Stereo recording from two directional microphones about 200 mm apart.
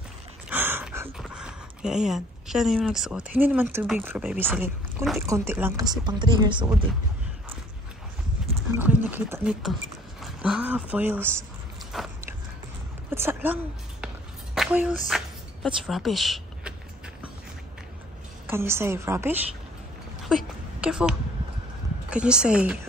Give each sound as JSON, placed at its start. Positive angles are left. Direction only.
{"t": 0.5, "sound": "a sound", "side_deg": -10}
{"t": 1.2, "sound": "speech", "side_deg": -5}
{"t": 8.7, "sound": "speech", "side_deg": -10}
{"t": 13.1, "sound": "a woman's voice", "side_deg": -10}
{"t": 14.0, "sound": "a sound", "side_deg": -5}
{"t": 18.5, "sound": "speech", "side_deg": -10}
{"t": 20.8, "sound": "speech", "side_deg": -5}